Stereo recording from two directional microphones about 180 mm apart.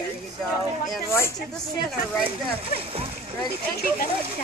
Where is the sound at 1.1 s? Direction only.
15° left (ahead or behind).